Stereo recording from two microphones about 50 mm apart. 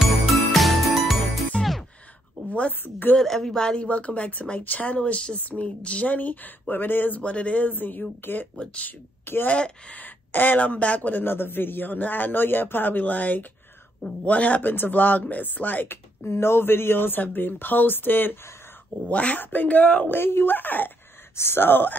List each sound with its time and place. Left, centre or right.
0.4 s jingle: centre
1.6 s music: centre
2.8 s a man's voice: left
3.2 s a woman's voice: centre; by 7.7 s left
7.8 s a man's voice: left
9.5 s a woman's voice: left
10.0 s speech: left
10.6 s a man's voice: left
14.6 s a man's voice: left
16.3 s speech: left
19.0 s a woman's voice: left
19.4 s a man's voice: left
20.1 s a man's voice: left
21.4 s speech: left